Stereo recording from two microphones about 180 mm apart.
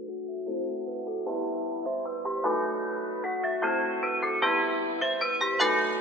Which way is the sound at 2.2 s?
Centre (ahead or behind).